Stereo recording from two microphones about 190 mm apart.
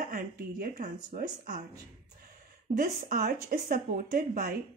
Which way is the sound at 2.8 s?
40° right (ahead or behind).